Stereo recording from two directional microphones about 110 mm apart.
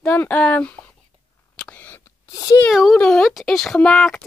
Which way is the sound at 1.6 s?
15° left (ahead or behind).